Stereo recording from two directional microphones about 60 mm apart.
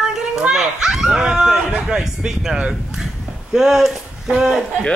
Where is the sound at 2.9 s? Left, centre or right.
Centre.